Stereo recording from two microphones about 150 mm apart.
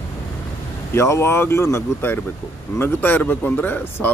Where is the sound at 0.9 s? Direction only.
15° left (ahead or behind).